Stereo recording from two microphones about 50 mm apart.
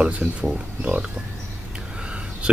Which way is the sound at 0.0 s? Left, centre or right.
Right.